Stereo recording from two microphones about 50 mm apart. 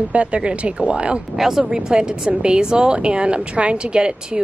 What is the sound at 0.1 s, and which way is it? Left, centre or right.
Speech, right.